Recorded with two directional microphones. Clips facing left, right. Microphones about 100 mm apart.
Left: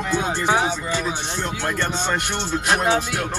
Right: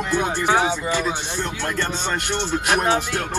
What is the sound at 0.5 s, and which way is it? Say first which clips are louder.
Speech: right 2 dB; 15° right (ahead or behind).